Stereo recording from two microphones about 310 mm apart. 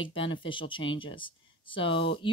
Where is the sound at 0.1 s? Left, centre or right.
Centre.